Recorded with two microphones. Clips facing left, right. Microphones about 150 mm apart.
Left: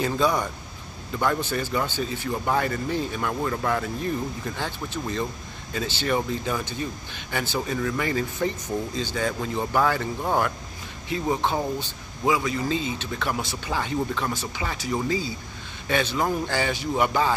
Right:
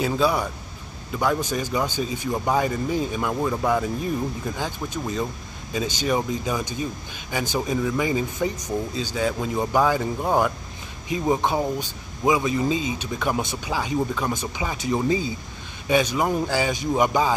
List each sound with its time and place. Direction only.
0.0 s speech: 10° right (ahead or behind)